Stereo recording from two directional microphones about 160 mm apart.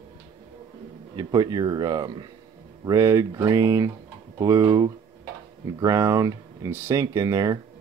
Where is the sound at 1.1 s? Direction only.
25° right (ahead or behind).